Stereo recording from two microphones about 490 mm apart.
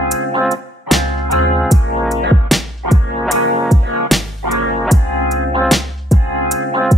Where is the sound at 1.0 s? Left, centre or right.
Left.